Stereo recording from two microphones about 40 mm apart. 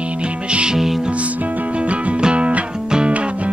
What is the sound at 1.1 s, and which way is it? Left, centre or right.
Music, right.